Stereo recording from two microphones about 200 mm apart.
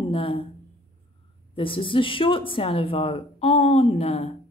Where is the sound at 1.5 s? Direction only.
25° left (ahead or behind).